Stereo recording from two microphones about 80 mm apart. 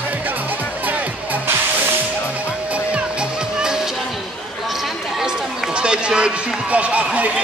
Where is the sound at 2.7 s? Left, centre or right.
Centre.